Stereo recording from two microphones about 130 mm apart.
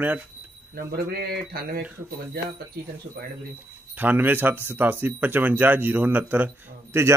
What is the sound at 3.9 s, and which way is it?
Speech, 15° right (ahead or behind).